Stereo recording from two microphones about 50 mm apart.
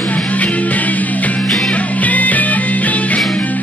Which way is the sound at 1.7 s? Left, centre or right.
Left.